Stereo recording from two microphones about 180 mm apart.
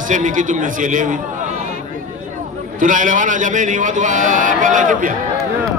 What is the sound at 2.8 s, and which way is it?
A man's voice, 45° right (ahead or behind).